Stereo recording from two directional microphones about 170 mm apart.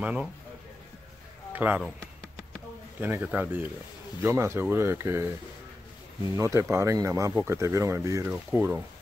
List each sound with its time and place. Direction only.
0.0 s speech: 5° right (ahead or behind)
1.5 s speech: 10° right (ahead or behind)
3.0 s speech: 10° right (ahead or behind)
6.3 s speech: 15° right (ahead or behind)